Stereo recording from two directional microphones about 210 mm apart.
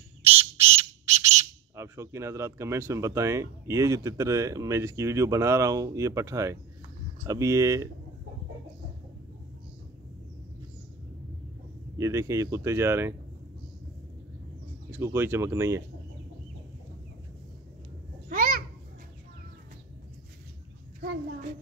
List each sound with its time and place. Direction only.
0.3 s squawk: 10° right (ahead or behind)
1.4 s speech: 15° right (ahead or behind)
12.0 s speech: 15° right (ahead or behind)
14.9 s speech: 10° right (ahead or behind)
18.3 s a sound: 40° right (ahead or behind)